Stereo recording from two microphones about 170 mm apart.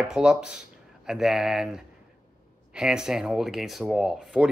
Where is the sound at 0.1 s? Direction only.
5° right (ahead or behind).